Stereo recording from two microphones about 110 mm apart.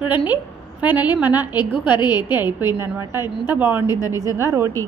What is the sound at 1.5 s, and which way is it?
Speech, 45° left (ahead or behind).